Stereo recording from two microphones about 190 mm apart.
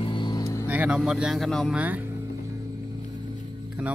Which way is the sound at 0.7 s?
5° right (ahead or behind).